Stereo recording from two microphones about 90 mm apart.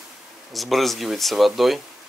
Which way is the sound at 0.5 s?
Centre (ahead or behind).